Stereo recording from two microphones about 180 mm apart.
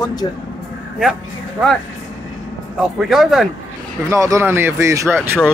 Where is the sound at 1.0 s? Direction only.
5° right (ahead or behind).